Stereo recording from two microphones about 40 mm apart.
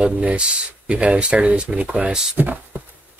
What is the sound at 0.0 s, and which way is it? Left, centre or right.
Speech, right.